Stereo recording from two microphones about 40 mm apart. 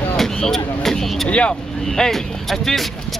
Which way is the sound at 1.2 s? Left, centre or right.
Left.